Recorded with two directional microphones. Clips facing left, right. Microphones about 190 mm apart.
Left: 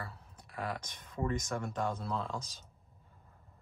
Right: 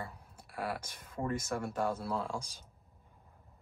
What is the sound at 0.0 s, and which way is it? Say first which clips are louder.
Speech: right 2 dB; 15° right (ahead or behind).